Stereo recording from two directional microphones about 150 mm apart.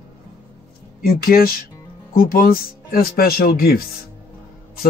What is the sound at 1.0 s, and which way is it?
Speech, 75° left (ahead or behind).